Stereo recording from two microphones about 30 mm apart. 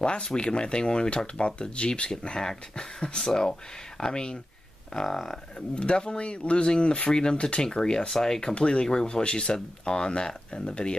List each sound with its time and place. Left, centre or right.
0.0 s speech: left
3.2 s speech: centre
5.0 s speech: centre
5.8 s speech: left
8.1 s speech: centre
8.5 s speech: left
8.8 s speech: left